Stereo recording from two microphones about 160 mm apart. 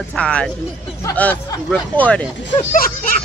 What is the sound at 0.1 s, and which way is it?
Speech, 5° left (ahead or behind).